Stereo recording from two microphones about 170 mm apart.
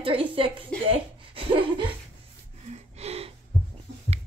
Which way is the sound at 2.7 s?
40° right (ahead or behind).